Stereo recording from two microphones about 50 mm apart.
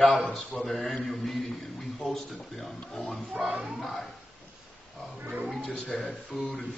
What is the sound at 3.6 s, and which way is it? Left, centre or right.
Speech, centre.